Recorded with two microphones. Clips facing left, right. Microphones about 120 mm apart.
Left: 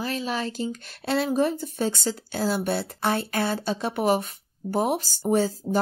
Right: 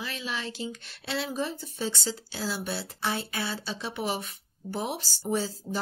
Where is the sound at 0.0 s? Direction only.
40° left (ahead or behind).